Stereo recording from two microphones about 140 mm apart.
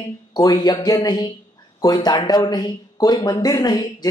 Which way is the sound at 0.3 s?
30° left (ahead or behind).